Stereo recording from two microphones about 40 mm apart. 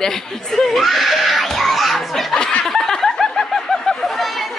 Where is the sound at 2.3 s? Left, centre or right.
Left.